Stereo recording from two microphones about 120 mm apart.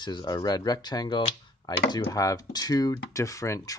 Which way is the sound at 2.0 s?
30° left (ahead or behind).